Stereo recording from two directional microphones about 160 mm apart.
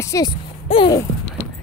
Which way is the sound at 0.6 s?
30° left (ahead or behind).